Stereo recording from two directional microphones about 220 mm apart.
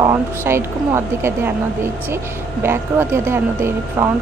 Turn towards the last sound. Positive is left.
turn(degrees=-10)  # may be behind; listen again after turning